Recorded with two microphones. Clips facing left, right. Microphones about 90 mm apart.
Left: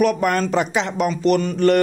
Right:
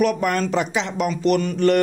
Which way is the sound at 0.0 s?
45° left (ahead or behind).